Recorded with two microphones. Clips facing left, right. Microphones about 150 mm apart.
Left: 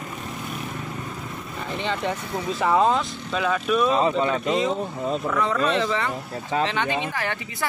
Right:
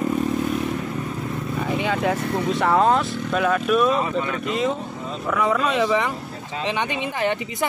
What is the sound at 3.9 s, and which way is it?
Speech, 25° left (ahead or behind).